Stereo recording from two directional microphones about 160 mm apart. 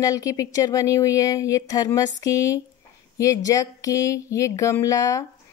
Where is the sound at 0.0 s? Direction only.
20° left (ahead or behind).